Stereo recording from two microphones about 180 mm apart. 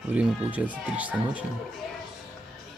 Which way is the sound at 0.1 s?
10° right (ahead or behind).